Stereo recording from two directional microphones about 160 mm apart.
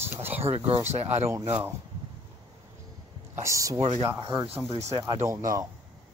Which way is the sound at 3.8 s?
40° right (ahead or behind).